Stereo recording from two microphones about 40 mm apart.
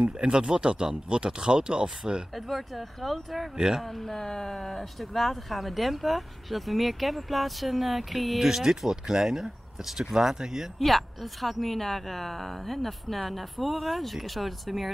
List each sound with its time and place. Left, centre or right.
0.2 s speech: right
2.3 s speech: centre
3.5 s speech: centre
3.8 s speech: centre
10.8 s speech: centre